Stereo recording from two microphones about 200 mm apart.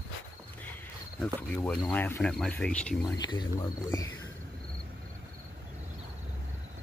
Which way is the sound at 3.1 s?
20° left (ahead or behind).